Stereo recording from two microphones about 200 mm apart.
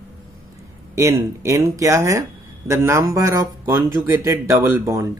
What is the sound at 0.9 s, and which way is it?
Speech, 15° right (ahead or behind).